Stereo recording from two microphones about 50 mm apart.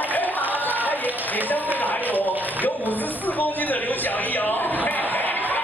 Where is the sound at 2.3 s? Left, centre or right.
Right.